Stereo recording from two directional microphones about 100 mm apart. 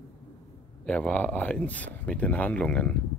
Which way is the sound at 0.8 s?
10° left (ahead or behind).